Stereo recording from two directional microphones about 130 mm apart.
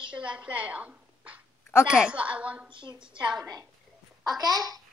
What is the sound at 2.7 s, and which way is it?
Speech, 40° right (ahead or behind).